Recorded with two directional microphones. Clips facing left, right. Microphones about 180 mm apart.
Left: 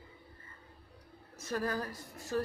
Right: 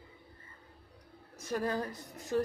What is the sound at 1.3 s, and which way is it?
Speech, 15° right (ahead or behind).